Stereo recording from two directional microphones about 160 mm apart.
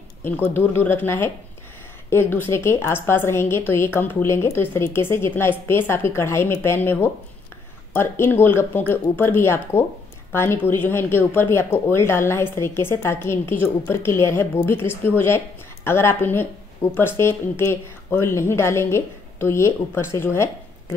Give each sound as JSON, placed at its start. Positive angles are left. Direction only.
{"t": 0.2, "sound": "speech", "side_deg": 15}